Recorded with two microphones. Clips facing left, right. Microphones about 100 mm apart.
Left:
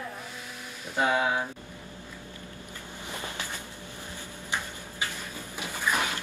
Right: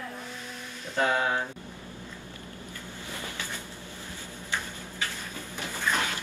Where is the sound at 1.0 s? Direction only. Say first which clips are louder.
Even; 10° left (ahead or behind).